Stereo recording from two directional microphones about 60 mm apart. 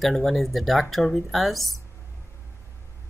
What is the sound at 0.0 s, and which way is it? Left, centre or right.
Speech, centre.